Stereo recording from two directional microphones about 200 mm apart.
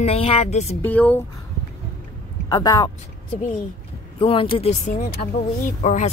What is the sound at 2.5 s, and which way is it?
Speech, 20° left (ahead or behind).